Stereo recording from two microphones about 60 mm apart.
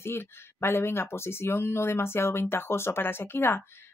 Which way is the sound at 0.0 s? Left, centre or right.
Left.